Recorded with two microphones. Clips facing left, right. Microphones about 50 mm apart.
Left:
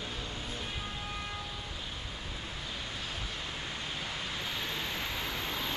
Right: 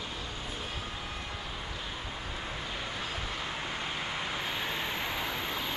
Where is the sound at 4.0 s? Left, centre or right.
Right.